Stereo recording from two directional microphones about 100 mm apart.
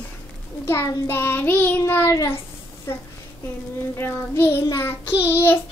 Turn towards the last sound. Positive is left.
turn(degrees=25)  # may be behind; listen again after turning